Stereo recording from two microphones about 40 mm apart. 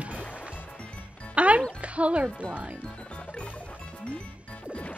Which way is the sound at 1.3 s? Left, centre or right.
Right.